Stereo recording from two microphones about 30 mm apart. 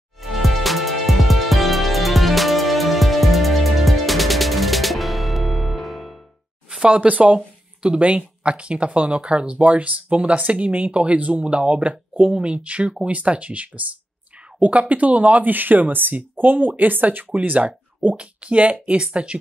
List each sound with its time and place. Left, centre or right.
0.2 s music: centre
6.9 s speech: right
7.3 s a sound: right
8.0 s speech: right
9.6 s speech: right
11.1 s speech: right
11.4 s speech: right
18.1 s speech: right